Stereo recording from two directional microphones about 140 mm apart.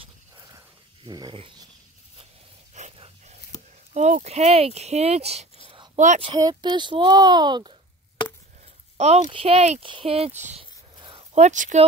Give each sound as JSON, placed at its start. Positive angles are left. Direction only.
{"t": 1.0, "sound": "speech", "side_deg": -30}
{"t": 2.8, "sound": "dog", "side_deg": -55}
{"t": 3.9, "sound": "speech", "side_deg": -55}
{"t": 5.9, "sound": "a woman's voice", "side_deg": -60}
{"t": 6.2, "sound": "speech", "side_deg": -30}
{"t": 8.9, "sound": "speech", "side_deg": -50}
{"t": 10.6, "sound": "a sound", "side_deg": -35}
{"t": 11.3, "sound": "speech", "side_deg": -60}